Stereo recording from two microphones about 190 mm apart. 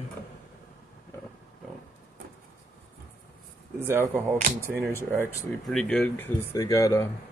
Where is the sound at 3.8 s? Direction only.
10° right (ahead or behind).